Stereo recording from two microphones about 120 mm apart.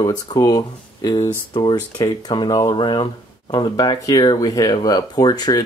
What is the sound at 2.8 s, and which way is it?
Speech, 45° left (ahead or behind).